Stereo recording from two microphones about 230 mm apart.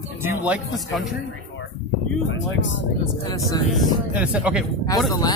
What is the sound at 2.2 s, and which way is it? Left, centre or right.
Speech, left.